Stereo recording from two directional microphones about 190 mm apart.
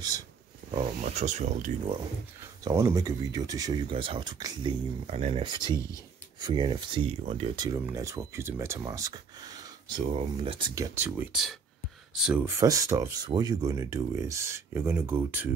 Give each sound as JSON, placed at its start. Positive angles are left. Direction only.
{"t": 1.0, "sound": "speech", "side_deg": -40}
{"t": 2.6, "sound": "speech", "side_deg": -15}
{"t": 5.0, "sound": "speech", "side_deg": -35}
{"t": 10.7, "sound": "speech", "side_deg": -15}
{"t": 12.4, "sound": "speech", "side_deg": -15}